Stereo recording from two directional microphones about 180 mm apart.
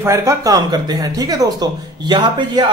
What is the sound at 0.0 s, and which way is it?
Speech, 15° right (ahead or behind).